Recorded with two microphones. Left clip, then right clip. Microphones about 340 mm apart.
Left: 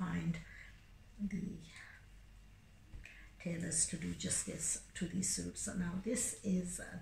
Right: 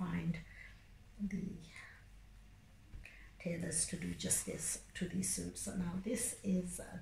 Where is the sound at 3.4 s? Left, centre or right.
Centre.